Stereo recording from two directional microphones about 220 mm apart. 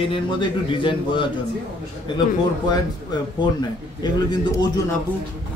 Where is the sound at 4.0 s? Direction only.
20° left (ahead or behind).